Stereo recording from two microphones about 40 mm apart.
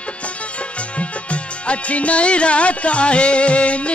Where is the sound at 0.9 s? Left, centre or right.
Left.